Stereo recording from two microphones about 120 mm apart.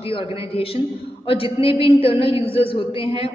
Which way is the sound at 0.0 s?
50° left (ahead or behind).